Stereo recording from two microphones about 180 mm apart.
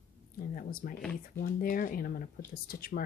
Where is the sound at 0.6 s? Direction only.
55° left (ahead or behind).